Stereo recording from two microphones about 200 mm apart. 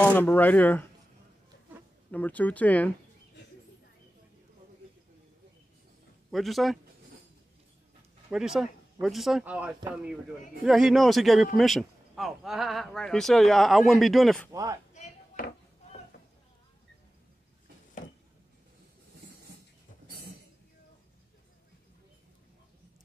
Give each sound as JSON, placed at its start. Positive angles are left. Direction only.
{"t": 0.0, "sound": "speech", "side_deg": 10}
{"t": 2.0, "sound": "speech", "side_deg": 10}
{"t": 6.3, "sound": "speech", "side_deg": 0}
{"t": 8.3, "sound": "speech", "side_deg": -5}
{"t": 14.5, "sound": "speech", "side_deg": -15}
{"t": 15.0, "sound": "a sound", "side_deg": 45}
{"t": 18.0, "sound": "a sound", "side_deg": 40}